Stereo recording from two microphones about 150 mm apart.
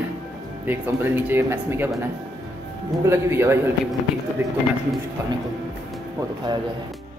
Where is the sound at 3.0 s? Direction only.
15° right (ahead or behind).